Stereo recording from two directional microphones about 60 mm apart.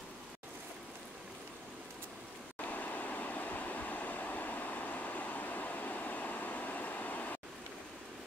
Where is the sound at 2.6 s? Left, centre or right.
Left.